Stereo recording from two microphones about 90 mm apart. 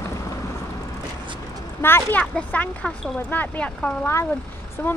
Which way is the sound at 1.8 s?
25° left (ahead or behind).